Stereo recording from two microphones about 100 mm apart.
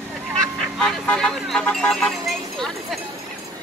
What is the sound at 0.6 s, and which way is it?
Vehicle, centre (ahead or behind).